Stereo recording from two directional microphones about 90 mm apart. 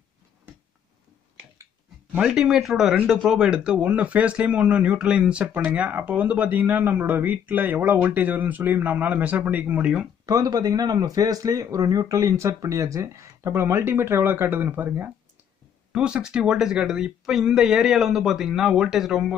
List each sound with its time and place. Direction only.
2.1 s speech: 5° right (ahead or behind)
10.2 s speech: 45° right (ahead or behind); by 15.1 s 20° right (ahead or behind)
15.9 s speech: 10° right (ahead or behind)